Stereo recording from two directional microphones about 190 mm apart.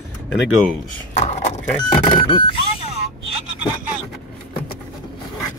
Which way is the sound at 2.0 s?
25° left (ahead or behind).